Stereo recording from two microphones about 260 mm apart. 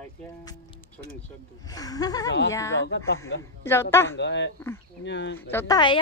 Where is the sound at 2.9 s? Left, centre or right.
Left.